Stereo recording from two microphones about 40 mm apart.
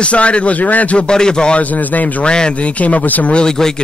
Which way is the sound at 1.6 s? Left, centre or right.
Left.